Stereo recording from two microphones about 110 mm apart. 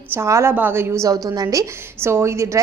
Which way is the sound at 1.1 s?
35° right (ahead or behind).